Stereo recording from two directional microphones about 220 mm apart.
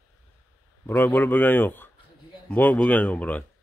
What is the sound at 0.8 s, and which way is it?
A man's voice, 10° left (ahead or behind).